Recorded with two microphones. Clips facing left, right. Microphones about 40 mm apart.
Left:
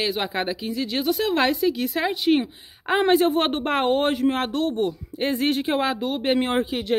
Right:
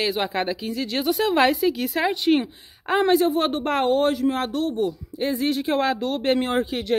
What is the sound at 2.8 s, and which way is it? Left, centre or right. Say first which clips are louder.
Speech: even; centre.